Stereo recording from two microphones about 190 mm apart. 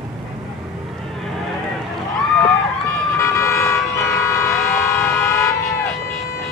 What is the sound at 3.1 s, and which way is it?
Vehicle, 15° left (ahead or behind).